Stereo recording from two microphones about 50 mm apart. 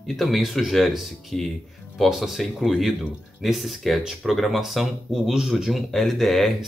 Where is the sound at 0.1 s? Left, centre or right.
Centre.